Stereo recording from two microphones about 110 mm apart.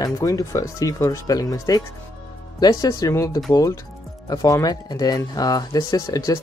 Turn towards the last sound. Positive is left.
turn(degrees=30)  # may be behind; listen again after turning